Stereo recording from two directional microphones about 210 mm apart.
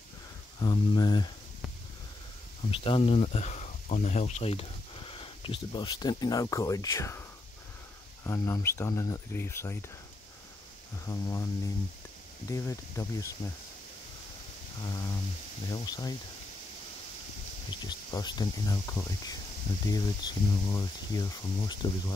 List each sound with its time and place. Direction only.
0.6 s speech: 20° left (ahead or behind)
2.7 s speech: 25° left (ahead or behind)
11.1 s speech: 15° left (ahead or behind)
12.4 s speech: 15° left (ahead or behind)
14.8 s speech: 15° left (ahead or behind)
17.6 s speech: 20° left (ahead or behind)